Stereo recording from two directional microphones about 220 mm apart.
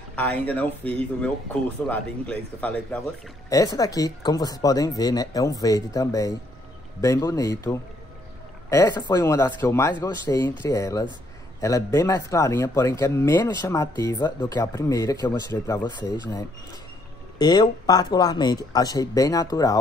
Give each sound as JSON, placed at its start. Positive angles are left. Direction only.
{"t": 0.1, "sound": "speech", "side_deg": 5}